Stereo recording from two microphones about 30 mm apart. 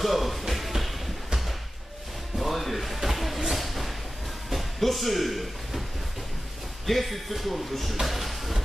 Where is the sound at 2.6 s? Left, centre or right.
Centre.